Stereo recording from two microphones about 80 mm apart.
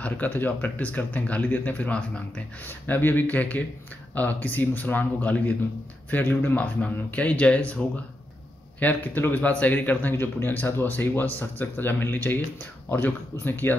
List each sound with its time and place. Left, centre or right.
0.0 s speech: left